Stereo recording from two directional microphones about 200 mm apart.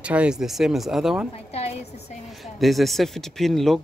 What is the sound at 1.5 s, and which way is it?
Speech, 30° left (ahead or behind).